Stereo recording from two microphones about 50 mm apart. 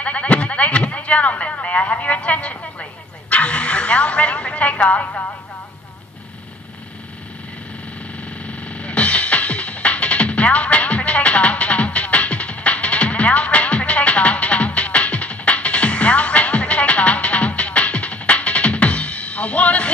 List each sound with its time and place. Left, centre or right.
0.0 s speech: left
8.2 s music: left